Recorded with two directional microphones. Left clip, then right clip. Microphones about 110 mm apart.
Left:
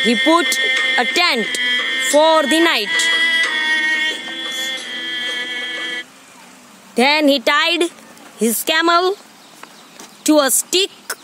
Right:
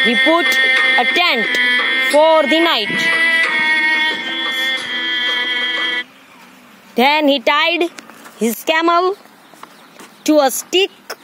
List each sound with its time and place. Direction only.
0.0 s music: 65° right (ahead or behind)
1.1 s a woman's voice: 5° left (ahead or behind)
1.4 s music: 55° right (ahead or behind); by 2.2 s 40° right (ahead or behind)
2.5 s speech: 20° left (ahead or behind)
2.9 s music: 20° right (ahead or behind); by 4.0 s 40° right (ahead or behind)
4.0 s music: 90° right
7.0 s a woman's voice: centre (ahead or behind)
8.4 s a woman's voice: 20° left (ahead or behind)
10.2 s a woman's voice: 15° left (ahead or behind)